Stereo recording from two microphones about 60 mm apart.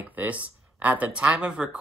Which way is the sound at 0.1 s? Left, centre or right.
Right.